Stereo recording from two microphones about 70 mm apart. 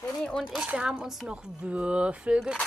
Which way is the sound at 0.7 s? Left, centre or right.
Centre.